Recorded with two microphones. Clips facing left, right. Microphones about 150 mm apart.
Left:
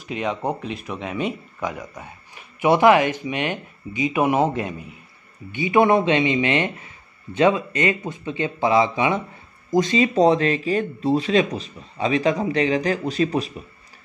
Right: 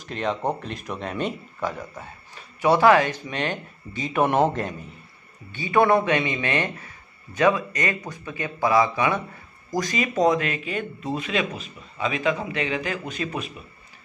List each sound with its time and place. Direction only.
0.0 s speech: 10° left (ahead or behind)
5.5 s speech: 20° left (ahead or behind); by 13.5 s 35° left (ahead or behind)